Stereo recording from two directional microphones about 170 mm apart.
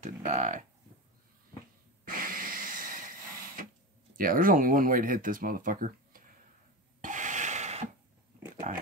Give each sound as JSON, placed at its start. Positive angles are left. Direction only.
{"t": 0.0, "sound": "speech", "side_deg": -45}
{"t": 2.0, "sound": "a sound", "side_deg": -55}
{"t": 4.2, "sound": "speech", "side_deg": -55}
{"t": 7.0, "sound": "rub", "side_deg": -45}
{"t": 8.6, "sound": "speech", "side_deg": -45}